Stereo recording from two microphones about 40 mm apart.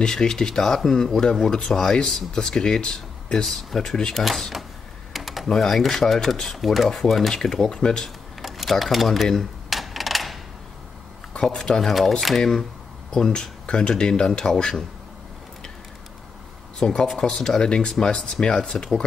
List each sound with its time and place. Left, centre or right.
0.0 s speech: centre
3.4 s speech: centre
5.1 s typing: centre
5.5 s speech: centre
6.4 s speech: centre
7.6 s speech: left
8.4 s speech: centre
9.7 s a sound: centre
11.4 s speech: centre
12.2 s speech: centre
16.8 s speech: centre